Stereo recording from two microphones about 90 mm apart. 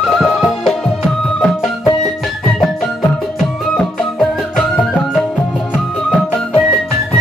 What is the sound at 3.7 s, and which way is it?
Music, 5° left (ahead or behind).